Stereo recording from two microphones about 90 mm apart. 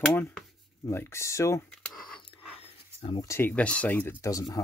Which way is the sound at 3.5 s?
15° left (ahead or behind).